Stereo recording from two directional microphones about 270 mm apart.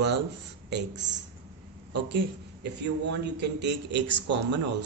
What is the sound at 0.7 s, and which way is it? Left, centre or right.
Speech, right.